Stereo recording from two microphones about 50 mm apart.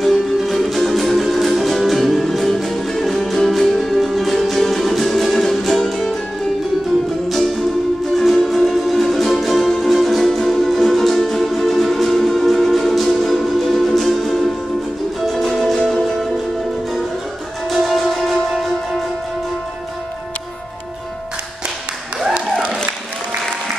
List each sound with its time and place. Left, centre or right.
0.0 s music: centre
8.2 s music: centre
17.6 s music: centre